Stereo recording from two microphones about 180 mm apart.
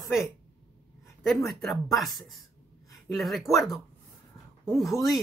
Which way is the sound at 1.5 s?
Centre (ahead or behind).